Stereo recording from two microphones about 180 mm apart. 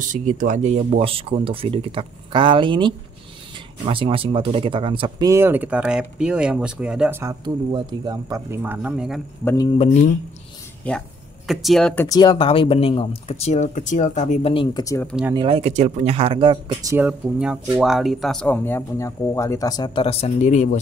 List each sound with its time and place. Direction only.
0.0 s speech: 45° right (ahead or behind); by 7.3 s 10° right (ahead or behind)
7.4 s speech: 25° right (ahead or behind); by 9.2 s 5° right (ahead or behind)
9.4 s speech: 10° left (ahead or behind)
10.9 s speech: centre (ahead or behind)
12.2 s speech: 25° left (ahead or behind)
15.3 s speech: 30° right (ahead or behind)
16.9 s speech: 5° right (ahead or behind); by 20.8 s 40° left (ahead or behind)